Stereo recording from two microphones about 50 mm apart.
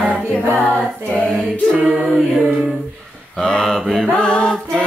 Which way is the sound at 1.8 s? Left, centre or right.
Centre.